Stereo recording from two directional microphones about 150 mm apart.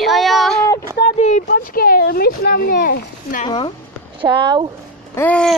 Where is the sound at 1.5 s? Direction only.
80° left.